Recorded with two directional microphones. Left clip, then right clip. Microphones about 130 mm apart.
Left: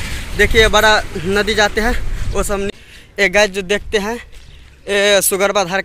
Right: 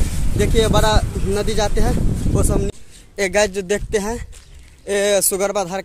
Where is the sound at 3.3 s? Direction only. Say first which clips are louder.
Even; 45° right (ahead or behind).